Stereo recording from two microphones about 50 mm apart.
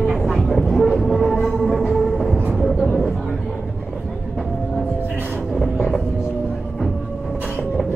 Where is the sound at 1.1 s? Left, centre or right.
Centre.